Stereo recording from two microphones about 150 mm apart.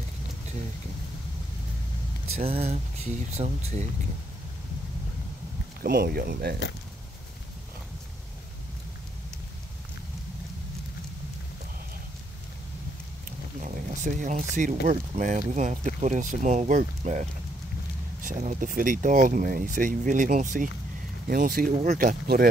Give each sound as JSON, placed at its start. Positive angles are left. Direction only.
{"t": 2.3, "sound": "speech", "side_deg": -40}
{"t": 5.8, "sound": "speech", "side_deg": -90}
{"t": 13.6, "sound": "speech", "side_deg": -55}
{"t": 21.3, "sound": "speech", "side_deg": -75}
{"t": 21.7, "sound": "speech", "side_deg": -60}